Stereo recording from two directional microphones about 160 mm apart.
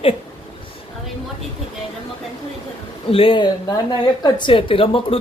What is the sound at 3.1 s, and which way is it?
Speech, 35° left (ahead or behind).